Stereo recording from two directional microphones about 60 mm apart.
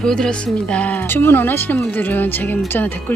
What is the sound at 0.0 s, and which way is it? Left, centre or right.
Music, centre.